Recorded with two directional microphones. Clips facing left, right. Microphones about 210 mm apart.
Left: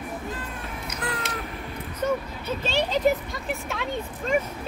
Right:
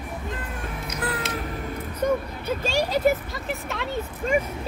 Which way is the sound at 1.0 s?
5° right (ahead or behind).